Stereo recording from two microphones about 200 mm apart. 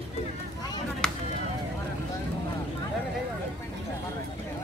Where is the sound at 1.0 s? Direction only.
5° left (ahead or behind).